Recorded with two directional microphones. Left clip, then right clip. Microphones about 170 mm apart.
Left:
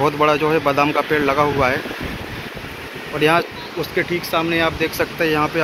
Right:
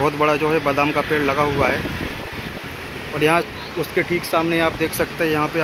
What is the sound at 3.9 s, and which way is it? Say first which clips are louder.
Speech: even; 20° right (ahead or behind).